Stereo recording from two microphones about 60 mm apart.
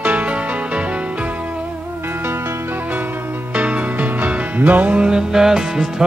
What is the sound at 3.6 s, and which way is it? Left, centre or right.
Music, right.